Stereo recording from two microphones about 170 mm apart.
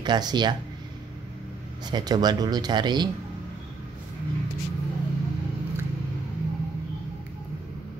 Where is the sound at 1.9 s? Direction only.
25° right (ahead or behind).